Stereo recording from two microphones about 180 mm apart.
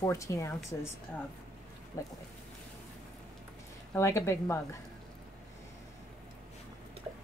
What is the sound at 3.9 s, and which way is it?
Speech, 15° left (ahead or behind).